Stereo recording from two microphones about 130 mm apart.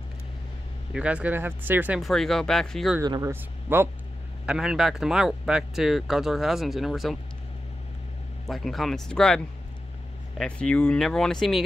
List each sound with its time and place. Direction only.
0.9 s speech: 10° right (ahead or behind)
2.0 s speech: centre (ahead or behind)
3.0 s speech: 25° right (ahead or behind)
4.5 s speech: 5° right (ahead or behind)
8.5 s speech: centre (ahead or behind)